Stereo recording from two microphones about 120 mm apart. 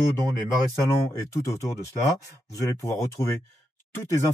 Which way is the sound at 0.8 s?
25° left (ahead or behind).